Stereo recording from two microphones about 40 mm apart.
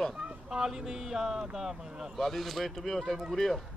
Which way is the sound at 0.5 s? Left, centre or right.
Centre.